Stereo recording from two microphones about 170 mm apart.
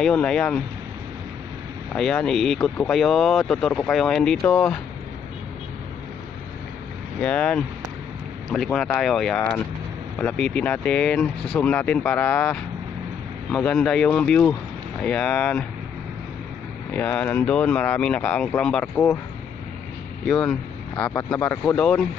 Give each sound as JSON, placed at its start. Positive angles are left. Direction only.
{"t": 0.0, "sound": "speech", "side_deg": 5}
{"t": 2.0, "sound": "speech", "side_deg": 5}
{"t": 7.2, "sound": "speech", "side_deg": 5}
{"t": 8.7, "sound": "speech", "side_deg": 0}
{"t": 17.2, "sound": "speech", "side_deg": 10}
{"t": 20.2, "sound": "speech", "side_deg": 5}
{"t": 21.1, "sound": "speech", "side_deg": 20}
{"t": 21.6, "sound": "speech", "side_deg": 10}